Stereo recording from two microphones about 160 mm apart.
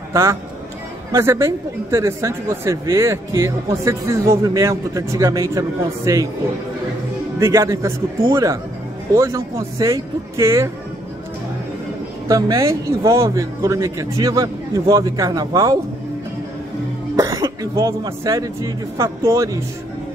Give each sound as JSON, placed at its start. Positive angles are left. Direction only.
{"t": 0.1, "sound": "a man's voice", "side_deg": -20}
{"t": 7.3, "sound": "speech", "side_deg": -15}
{"t": 12.3, "sound": "speech", "side_deg": -20}
{"t": 17.2, "sound": "speech", "side_deg": -20}